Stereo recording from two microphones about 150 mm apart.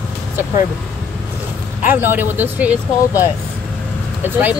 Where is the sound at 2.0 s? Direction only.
15° right (ahead or behind).